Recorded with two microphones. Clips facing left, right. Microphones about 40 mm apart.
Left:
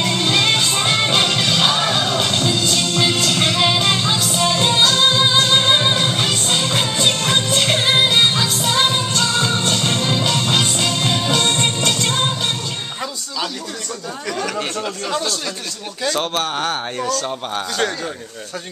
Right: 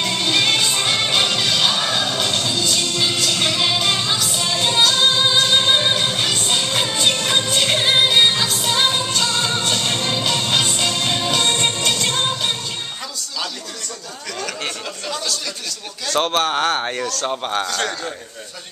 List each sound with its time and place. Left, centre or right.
0.0 s music: centre
16.2 s speech: centre
17.6 s a man's voice: centre